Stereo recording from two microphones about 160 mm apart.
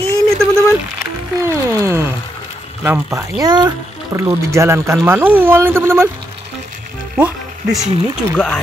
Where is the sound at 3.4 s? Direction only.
25° right (ahead or behind).